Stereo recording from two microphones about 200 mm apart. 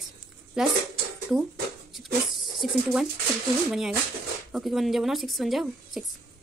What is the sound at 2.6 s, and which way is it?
Speech, centre (ahead or behind).